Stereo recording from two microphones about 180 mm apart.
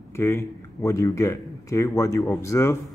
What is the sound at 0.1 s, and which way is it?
Speech, 15° left (ahead or behind).